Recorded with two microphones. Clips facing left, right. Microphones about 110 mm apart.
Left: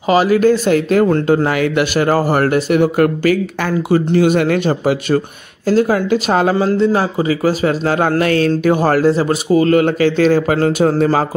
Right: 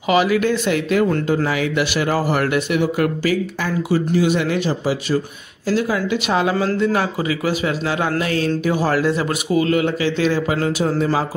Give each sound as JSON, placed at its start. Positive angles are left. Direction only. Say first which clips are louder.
{"t": 0.0, "sound": "a man's voice", "louder": "left 5 dB", "side_deg": 35}
{"t": 1.3, "sound": "speech", "louder": "left 5 dB", "side_deg": 60}
{"t": 5.7, "sound": "speech", "louder": "left 6 dB", "side_deg": 45}
{"t": 6.5, "sound": "a man's voice", "louder": "left 5 dB", "side_deg": 30}
{"t": 8.2, "sound": "speech", "louder": "left 6 dB", "side_deg": 70}
{"t": 9.0, "sound": "speech", "louder": "left 6 dB", "side_deg": 30}